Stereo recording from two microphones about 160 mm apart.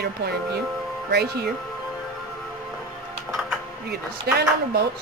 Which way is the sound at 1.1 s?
85° right.